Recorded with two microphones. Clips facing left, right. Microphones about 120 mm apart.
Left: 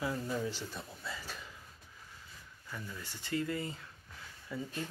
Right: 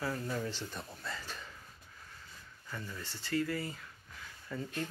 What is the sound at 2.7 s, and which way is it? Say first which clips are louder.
Speech: right 1 dB; 10° left (ahead or behind).